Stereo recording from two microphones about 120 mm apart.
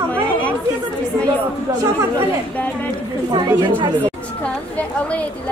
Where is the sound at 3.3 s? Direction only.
40° right (ahead or behind).